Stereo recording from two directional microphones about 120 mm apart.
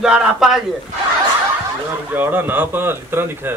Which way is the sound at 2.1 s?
15° right (ahead or behind).